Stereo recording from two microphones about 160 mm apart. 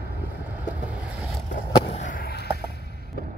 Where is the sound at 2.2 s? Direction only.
75° left (ahead or behind).